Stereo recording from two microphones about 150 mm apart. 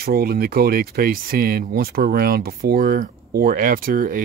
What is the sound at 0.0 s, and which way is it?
Speech, 85° right.